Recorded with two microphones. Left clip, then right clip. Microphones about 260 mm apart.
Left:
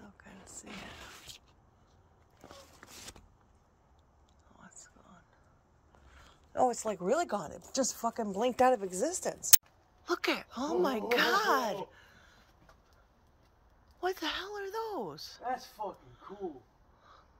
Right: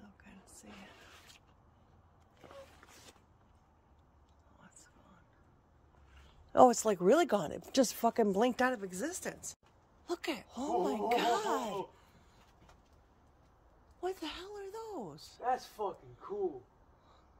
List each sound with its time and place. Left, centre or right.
0.2 s whispering: centre
4.6 s whispering: centre
6.5 s speech: right
8.5 s speech: centre
14.0 s speech: centre